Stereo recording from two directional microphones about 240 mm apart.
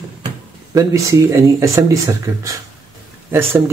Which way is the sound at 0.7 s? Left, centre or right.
Centre.